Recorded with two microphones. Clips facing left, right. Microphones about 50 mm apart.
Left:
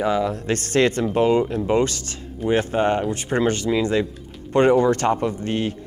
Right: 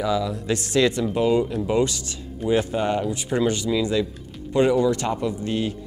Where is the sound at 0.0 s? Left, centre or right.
Left.